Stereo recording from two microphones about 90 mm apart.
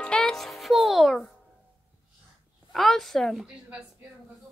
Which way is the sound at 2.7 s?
Centre (ahead or behind).